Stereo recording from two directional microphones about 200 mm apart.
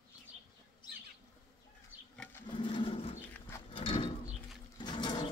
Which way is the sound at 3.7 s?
25° left (ahead or behind).